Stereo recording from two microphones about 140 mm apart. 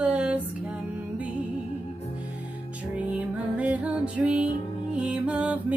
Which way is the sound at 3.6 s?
10° right (ahead or behind).